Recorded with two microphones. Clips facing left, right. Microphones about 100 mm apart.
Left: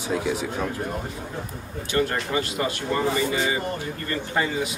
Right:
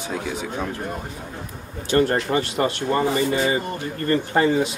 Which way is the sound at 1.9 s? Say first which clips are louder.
Right 5 dB; 45° right (ahead or behind).